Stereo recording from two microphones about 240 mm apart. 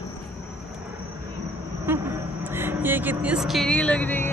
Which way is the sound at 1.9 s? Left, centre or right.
Centre.